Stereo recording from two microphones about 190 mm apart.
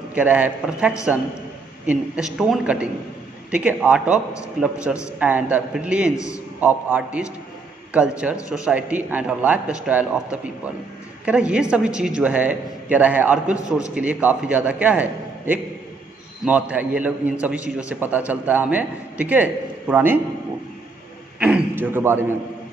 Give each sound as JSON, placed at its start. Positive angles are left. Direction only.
{"t": 0.1, "sound": "a man's voice", "side_deg": -5}
{"t": 6.1, "sound": "a man's voice", "side_deg": 15}
{"t": 6.6, "sound": "a man's voice", "side_deg": -10}
{"t": 21.4, "sound": "a man's voice", "side_deg": -5}